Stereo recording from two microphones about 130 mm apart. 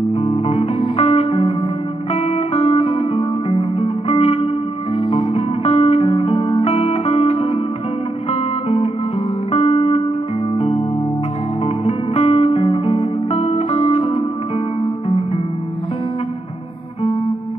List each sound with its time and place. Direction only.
0.1 s music: 55° left (ahead or behind)